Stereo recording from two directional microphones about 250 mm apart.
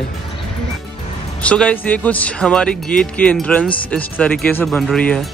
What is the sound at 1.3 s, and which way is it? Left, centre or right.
Speech, centre.